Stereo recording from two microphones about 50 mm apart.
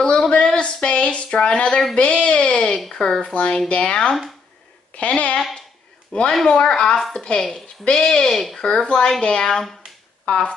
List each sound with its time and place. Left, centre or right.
0.0 s a sound: centre
3.0 s speech: centre
6.4 s speech: centre
8.3 s speech: centre
8.5 s speech: centre